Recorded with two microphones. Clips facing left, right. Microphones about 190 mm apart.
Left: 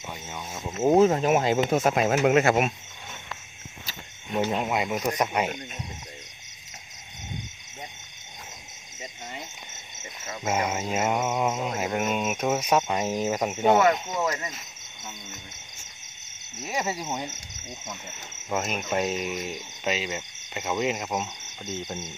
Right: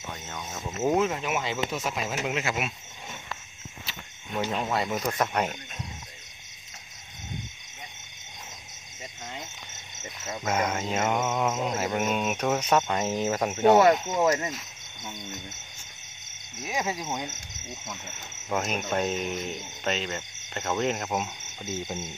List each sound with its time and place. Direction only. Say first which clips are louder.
0.1 s speech: left 1 dB; 10° left (ahead or behind)
0.9 s speech: left 11 dB; 35° left (ahead or behind)
4.4 s speech: left 2 dB; 15° left (ahead or behind)
10.4 s speech: left 1 dB; 10° left (ahead or behind)
16.6 s speech: left 1 dB; 5° left (ahead or behind)